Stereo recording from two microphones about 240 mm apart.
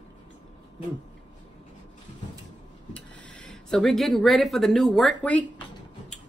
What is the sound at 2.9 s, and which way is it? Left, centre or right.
Speech, centre.